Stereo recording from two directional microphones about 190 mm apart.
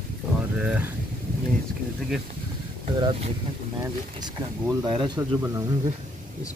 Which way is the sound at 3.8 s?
20° right (ahead or behind).